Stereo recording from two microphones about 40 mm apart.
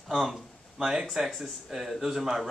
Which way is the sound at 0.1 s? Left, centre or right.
Centre.